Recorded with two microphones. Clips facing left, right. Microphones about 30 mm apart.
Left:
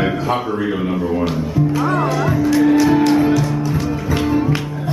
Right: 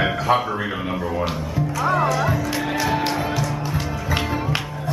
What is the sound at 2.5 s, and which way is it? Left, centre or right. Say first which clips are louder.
Music: left 11 dB; centre.